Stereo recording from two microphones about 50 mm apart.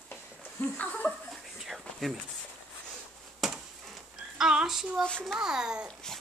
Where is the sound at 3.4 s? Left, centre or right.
Centre.